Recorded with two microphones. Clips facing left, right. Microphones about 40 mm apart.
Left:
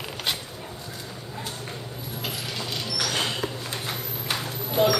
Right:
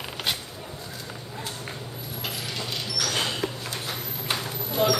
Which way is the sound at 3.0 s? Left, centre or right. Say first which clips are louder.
Even; centre.